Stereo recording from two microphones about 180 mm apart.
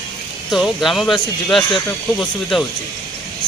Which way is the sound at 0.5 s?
Centre (ahead or behind).